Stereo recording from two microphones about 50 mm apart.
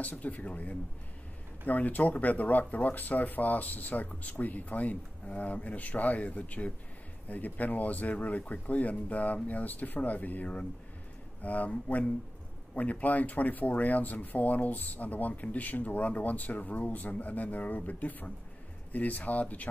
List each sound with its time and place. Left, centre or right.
0.0 s speech: left